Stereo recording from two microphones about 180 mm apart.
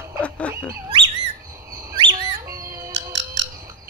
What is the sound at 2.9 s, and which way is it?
Squawk, 90° right.